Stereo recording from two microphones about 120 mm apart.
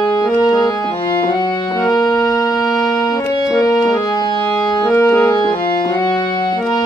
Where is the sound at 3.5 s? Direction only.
30° left (ahead or behind).